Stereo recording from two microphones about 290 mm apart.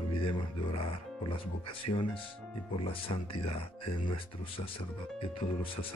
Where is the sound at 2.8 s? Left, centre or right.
Centre.